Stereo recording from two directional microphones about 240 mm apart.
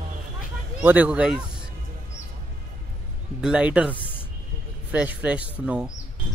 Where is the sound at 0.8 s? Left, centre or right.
Centre.